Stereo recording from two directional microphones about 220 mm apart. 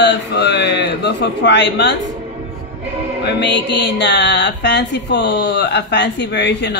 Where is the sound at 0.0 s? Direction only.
50° left (ahead or behind).